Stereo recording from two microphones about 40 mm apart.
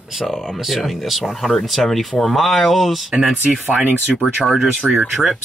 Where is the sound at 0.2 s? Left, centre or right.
Centre.